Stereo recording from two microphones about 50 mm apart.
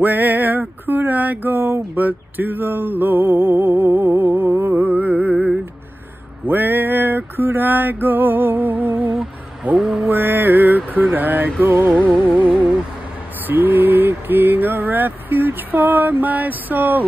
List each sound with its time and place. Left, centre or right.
0.0 s a sound: right
4.6 s music: right
4.9 s music: right
6.4 s male singing: right
9.8 s mantra: centre
10.0 s mantra: right
10.9 s a sound: right